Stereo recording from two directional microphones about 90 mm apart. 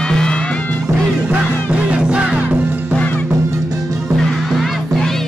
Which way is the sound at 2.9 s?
15° left (ahead or behind).